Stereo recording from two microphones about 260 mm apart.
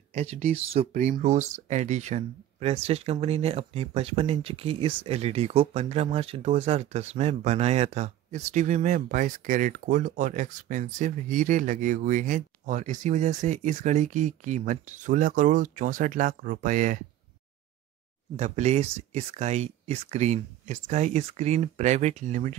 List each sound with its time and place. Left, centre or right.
0.1 s speech: right
18.3 s speech: right